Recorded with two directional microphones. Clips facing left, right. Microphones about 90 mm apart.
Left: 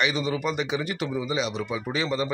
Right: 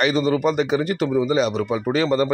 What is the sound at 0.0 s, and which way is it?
Speech, 40° right (ahead or behind).